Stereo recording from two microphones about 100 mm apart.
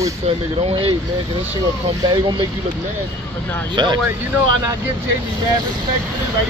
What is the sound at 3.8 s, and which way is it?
Speech, 45° right (ahead or behind).